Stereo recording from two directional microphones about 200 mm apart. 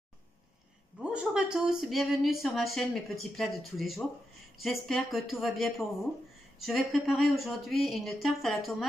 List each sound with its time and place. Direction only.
1.1 s speech: 5° right (ahead or behind)